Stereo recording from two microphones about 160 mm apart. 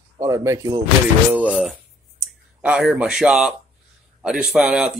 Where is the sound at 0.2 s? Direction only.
20° right (ahead or behind).